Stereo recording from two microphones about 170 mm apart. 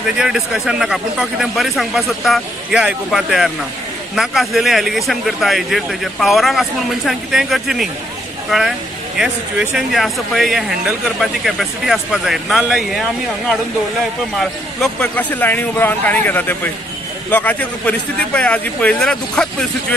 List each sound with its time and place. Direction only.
0.2 s speech: 5° right (ahead or behind)
14.4 s speech: 5° left (ahead or behind)